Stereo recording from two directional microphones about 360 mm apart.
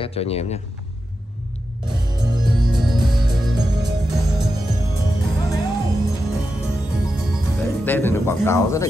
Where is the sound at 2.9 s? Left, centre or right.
Centre.